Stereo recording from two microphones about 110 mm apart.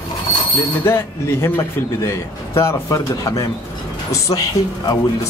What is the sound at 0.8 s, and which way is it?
Speech, 20° left (ahead or behind).